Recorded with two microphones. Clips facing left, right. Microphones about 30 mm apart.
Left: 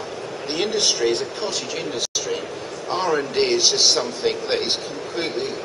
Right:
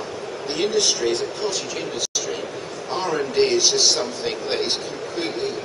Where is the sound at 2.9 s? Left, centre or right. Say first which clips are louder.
Even; centre.